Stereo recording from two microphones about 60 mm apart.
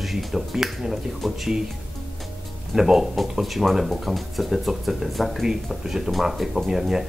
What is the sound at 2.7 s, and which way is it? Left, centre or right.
Speech, centre.